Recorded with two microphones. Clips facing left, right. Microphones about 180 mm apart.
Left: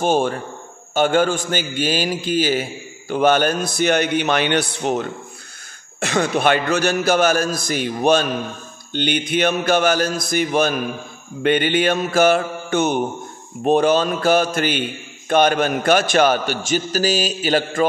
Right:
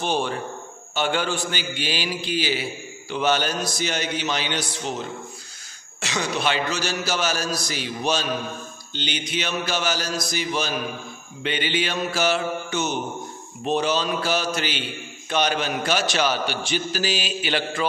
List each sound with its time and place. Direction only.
0.0 s a man's voice: 45° left (ahead or behind)